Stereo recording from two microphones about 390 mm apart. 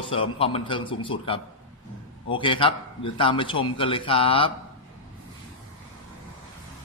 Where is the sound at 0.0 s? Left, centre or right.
Centre.